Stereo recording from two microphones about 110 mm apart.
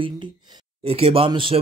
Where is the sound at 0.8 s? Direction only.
65° right (ahead or behind).